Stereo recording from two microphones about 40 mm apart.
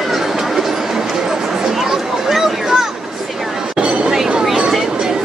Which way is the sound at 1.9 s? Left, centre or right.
Centre.